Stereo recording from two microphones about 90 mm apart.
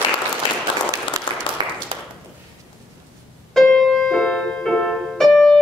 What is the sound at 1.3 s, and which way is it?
Applause, 65° right (ahead or behind).